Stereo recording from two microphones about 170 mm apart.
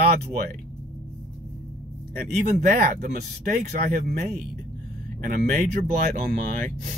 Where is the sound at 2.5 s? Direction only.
50° right (ahead or behind).